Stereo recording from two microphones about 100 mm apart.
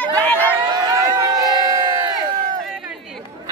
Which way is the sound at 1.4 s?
40° right (ahead or behind).